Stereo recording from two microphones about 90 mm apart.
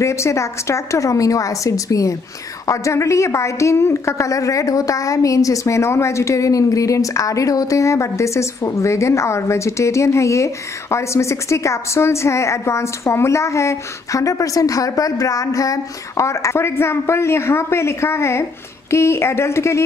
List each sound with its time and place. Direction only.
0.0 s a woman's voice: 35° left (ahead or behind)